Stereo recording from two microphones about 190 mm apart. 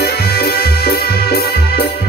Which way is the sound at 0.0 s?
55° left (ahead or behind).